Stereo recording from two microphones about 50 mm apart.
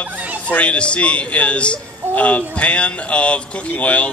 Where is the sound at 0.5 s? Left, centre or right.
Left.